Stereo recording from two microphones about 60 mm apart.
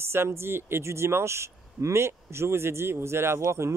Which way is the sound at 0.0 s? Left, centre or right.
Right.